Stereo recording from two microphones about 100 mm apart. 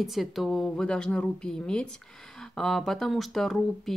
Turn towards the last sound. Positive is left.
turn(degrees=0)  # may be behind; listen again after turning